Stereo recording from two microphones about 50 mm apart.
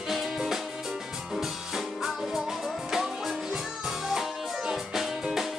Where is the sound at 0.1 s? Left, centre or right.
Centre.